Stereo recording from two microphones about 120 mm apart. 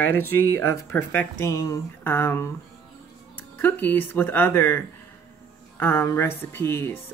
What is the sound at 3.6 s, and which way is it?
Speech, 15° left (ahead or behind).